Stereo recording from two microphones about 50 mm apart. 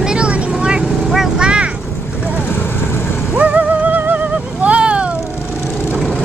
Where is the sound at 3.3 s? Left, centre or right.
Right.